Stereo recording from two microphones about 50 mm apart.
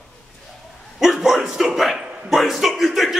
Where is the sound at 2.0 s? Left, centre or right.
Right.